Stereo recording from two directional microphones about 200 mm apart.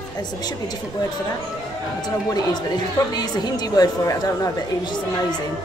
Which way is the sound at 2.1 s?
20° left (ahead or behind).